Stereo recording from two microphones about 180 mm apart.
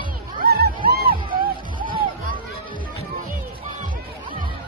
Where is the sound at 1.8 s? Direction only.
25° right (ahead or behind).